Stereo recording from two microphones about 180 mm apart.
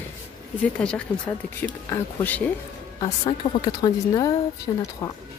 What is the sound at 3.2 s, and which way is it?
Speech, 25° left (ahead or behind).